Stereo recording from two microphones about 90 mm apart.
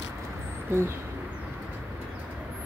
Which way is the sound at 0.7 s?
25° right (ahead or behind).